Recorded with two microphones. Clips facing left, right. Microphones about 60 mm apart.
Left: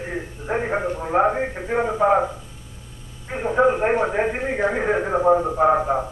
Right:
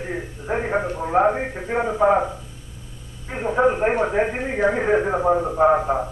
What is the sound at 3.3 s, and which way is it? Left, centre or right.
A man's voice, centre.